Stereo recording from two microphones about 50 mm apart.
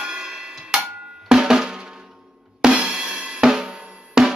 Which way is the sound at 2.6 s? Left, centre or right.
Centre.